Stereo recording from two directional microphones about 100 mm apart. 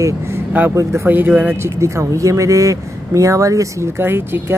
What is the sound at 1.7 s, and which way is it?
Speech, 30° right (ahead or behind).